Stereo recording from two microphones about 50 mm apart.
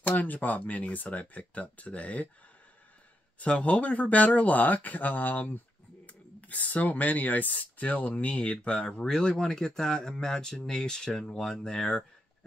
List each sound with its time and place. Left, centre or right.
0.0 s speech: left
3.3 s speech: left